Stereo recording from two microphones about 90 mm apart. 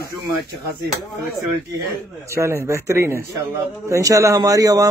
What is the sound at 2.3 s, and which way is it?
A man's voice, 35° right (ahead or behind).